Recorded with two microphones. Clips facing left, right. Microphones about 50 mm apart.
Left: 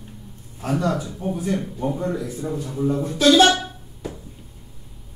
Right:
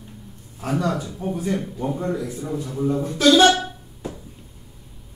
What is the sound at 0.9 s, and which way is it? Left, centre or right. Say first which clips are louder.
A man's voice: left 1 dB; centre.